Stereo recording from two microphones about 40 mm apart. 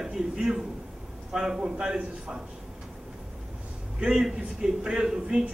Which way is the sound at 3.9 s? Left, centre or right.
Centre.